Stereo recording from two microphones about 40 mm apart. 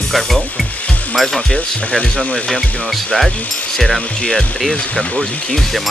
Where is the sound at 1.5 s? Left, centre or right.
Left.